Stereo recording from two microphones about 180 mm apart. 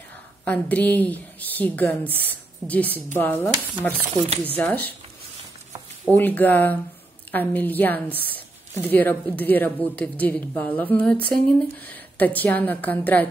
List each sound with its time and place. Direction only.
0.5 s a woman's voice: 10° left (ahead or behind)
4.6 s a woman's voice: 10° left (ahead or behind)
6.0 s a woman's voice: 10° left (ahead or behind)